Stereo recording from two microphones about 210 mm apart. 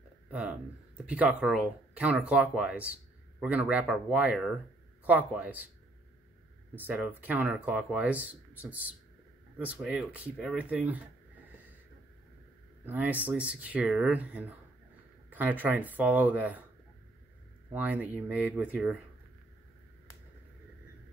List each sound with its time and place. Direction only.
0.3 s speech: 5° right (ahead or behind)
6.8 s speech: 5° right (ahead or behind)
12.8 s speech: 10° right (ahead or behind)
17.7 s speech: 5° right (ahead or behind)